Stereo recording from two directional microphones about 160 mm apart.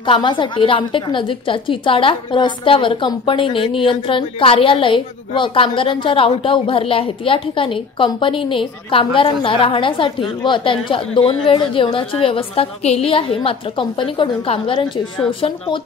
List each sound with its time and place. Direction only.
0.0 s a woman's voice: 30° left (ahead or behind)